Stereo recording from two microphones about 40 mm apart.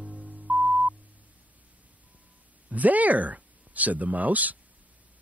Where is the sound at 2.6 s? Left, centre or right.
Right.